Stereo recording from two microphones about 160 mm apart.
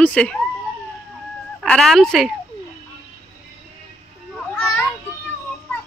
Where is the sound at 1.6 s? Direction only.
Centre (ahead or behind).